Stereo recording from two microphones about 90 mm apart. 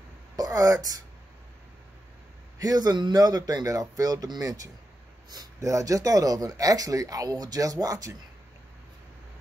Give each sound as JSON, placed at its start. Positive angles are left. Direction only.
{"t": 0.4, "sound": "speech", "side_deg": -40}
{"t": 2.6, "sound": "speech", "side_deg": -45}